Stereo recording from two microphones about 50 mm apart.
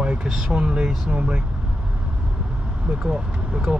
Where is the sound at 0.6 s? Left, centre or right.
Right.